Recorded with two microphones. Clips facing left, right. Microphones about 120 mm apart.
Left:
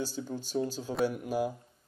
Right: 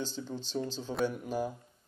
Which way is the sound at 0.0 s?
10° left (ahead or behind).